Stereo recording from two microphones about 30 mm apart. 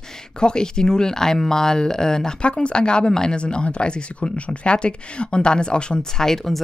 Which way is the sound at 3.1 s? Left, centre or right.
Centre.